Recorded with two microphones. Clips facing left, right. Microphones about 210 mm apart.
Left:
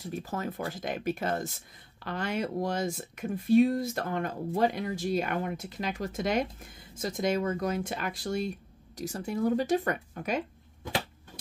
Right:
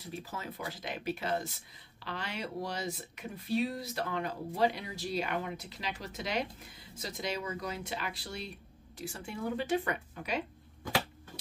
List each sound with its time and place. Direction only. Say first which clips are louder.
0.0 s speech: left 7 dB; 45° left (ahead or behind)